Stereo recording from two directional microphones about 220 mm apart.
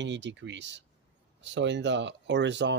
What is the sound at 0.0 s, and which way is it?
Speech, 55° right (ahead or behind).